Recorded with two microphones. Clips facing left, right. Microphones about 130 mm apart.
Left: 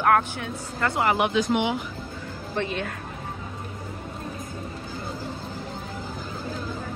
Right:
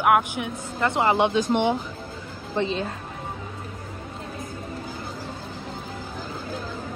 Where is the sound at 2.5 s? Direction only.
25° right (ahead or behind).